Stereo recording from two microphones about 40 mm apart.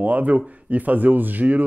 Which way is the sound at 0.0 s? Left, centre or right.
Right.